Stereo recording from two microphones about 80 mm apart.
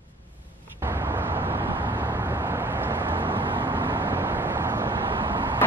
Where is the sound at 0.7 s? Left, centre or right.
Right.